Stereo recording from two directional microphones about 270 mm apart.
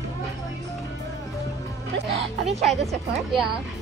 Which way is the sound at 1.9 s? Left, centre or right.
Right.